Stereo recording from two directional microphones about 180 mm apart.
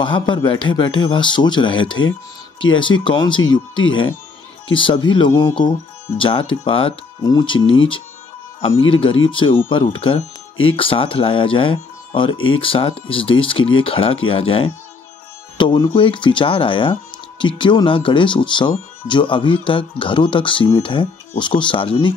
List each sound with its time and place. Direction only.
0.0 s speech: 25° left (ahead or behind)
7.6 s speech: 90° left
9.3 s speech: 30° left (ahead or behind)
15.5 s speech: 25° left (ahead or behind)